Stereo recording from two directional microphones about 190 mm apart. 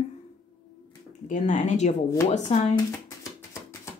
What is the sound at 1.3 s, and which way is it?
Speech, 40° left (ahead or behind).